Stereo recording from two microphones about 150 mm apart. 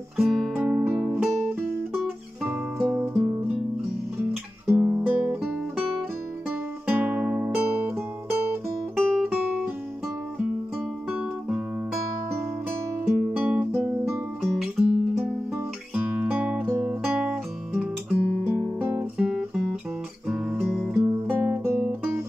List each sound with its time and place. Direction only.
0.2 s music: centre (ahead or behind)
3.0 s music: 10° right (ahead or behind)
4.6 s guitar: 15° right (ahead or behind)
6.9 s music: 10° right (ahead or behind)
8.9 s guitar: centre (ahead or behind)
9.3 s music: 10° right (ahead or behind)
11.1 s music: 10° right (ahead or behind)
13.1 s music: 10° right (ahead or behind)
14.4 s guitar: centre (ahead or behind)
15.5 s music: 10° right (ahead or behind)
20.2 s guitar: 5° right (ahead or behind)
21.0 s music: 15° right (ahead or behind)